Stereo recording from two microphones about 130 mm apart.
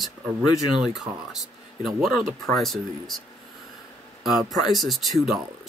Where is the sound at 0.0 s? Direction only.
Centre (ahead or behind).